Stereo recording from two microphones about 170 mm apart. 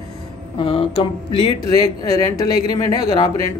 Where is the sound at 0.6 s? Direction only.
30° left (ahead or behind).